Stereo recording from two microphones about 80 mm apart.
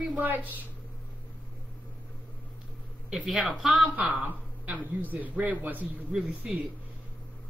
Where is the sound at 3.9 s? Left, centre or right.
Centre.